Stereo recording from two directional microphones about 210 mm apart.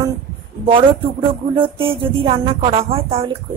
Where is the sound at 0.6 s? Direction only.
25° right (ahead or behind).